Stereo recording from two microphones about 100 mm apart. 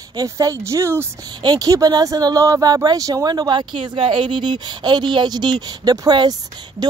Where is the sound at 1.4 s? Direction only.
40° right (ahead or behind).